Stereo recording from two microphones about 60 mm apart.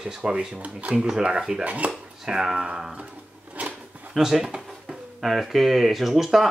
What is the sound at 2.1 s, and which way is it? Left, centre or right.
Speech, centre.